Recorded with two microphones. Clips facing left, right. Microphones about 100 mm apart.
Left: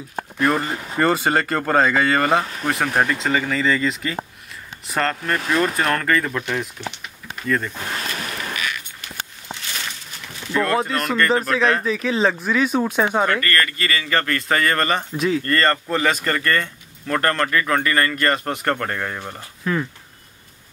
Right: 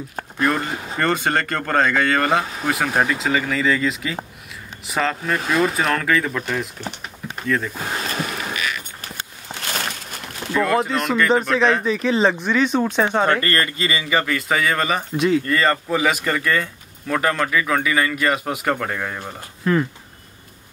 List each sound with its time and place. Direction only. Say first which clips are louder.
0.4 s speech: left 1 dB; centre (ahead or behind)
6.8 s typing: right 1 dB; 40° right (ahead or behind)
7.4 s speech: even; centre (ahead or behind)
9.0 s a sound: even; 50° right (ahead or behind)
10.5 s speech: right 1 dB; centre (ahead or behind)
13.2 s speech: right 1 dB; 25° right (ahead or behind); by 19.9 s 5° right (ahead or behind)